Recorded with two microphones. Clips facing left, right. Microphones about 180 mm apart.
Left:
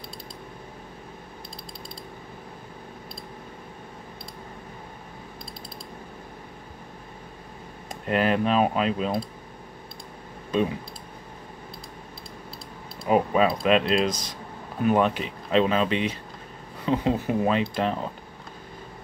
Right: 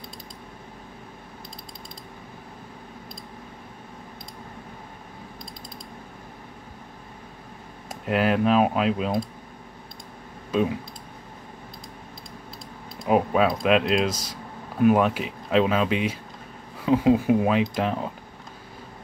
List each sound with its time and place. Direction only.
7.9 s speech: 5° right (ahead or behind)
10.5 s speech: 5° right (ahead or behind)
13.0 s speech: centre (ahead or behind)